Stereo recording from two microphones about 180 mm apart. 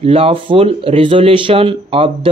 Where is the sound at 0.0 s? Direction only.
30° right (ahead or behind).